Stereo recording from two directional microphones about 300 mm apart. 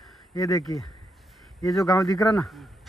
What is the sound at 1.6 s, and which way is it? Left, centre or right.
Speech, centre.